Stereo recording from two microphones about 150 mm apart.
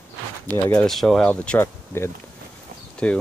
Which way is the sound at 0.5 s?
15° left (ahead or behind).